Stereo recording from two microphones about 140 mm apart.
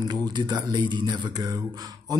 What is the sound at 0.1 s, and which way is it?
Speech, 30° right (ahead or behind).